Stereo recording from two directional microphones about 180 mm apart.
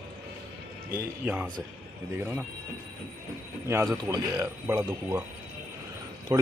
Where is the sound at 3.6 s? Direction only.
15° right (ahead or behind).